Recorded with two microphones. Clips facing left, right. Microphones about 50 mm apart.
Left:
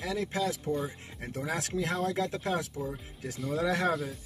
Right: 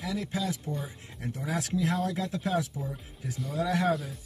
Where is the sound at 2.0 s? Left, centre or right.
Left.